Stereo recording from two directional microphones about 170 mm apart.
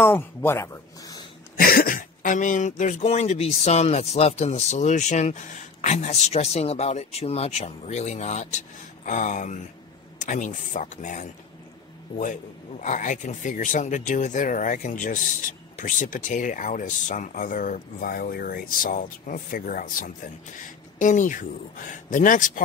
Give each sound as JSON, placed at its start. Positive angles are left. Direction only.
{"t": 0.0, "sound": "speech", "side_deg": 15}
{"t": 1.6, "sound": "speech", "side_deg": 60}
{"t": 12.8, "sound": "speech", "side_deg": 45}